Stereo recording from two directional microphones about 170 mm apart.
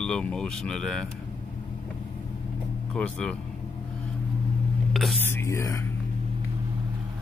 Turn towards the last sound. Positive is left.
turn(degrees=15)  # may be behind; listen again after turning